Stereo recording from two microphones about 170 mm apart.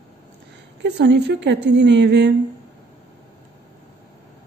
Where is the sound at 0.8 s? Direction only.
90° right.